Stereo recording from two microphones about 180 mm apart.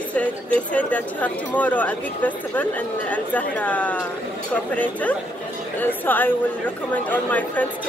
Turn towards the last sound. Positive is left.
turn(degrees=10)  # may be behind; listen again after turning